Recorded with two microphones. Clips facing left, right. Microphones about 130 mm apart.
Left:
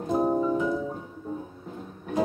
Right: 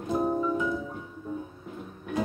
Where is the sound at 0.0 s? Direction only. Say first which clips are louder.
Left 3 dB; 30° left (ahead or behind).